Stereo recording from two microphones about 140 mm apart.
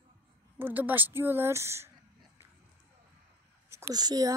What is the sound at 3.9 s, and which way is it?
Speech, 30° right (ahead or behind).